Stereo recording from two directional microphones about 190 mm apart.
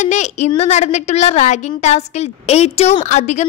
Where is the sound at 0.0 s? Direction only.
35° left (ahead or behind).